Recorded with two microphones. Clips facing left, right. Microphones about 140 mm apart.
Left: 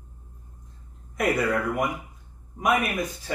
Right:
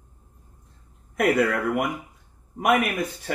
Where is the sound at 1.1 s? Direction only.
60° right (ahead or behind).